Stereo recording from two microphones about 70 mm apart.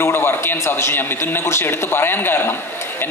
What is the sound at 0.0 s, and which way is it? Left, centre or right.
A man's voice, left.